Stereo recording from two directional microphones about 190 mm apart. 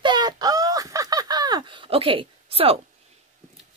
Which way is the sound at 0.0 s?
20° right (ahead or behind).